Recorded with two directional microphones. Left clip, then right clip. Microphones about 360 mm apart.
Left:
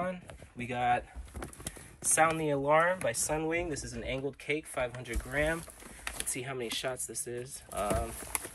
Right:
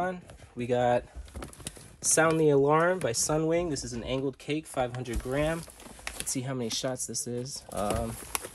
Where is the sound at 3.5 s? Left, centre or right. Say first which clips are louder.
Right 5 dB; centre.